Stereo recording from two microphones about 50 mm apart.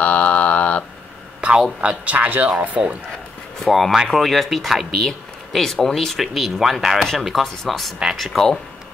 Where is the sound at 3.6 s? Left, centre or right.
Centre.